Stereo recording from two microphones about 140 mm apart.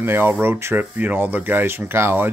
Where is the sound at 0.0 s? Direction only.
15° right (ahead or behind).